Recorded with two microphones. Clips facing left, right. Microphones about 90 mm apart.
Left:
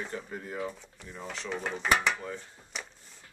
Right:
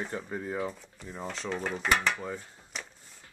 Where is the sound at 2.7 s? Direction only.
Centre (ahead or behind).